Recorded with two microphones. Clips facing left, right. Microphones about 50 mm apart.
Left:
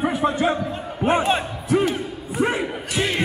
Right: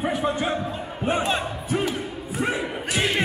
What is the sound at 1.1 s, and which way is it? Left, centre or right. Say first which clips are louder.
Speech: left 4 dB; centre.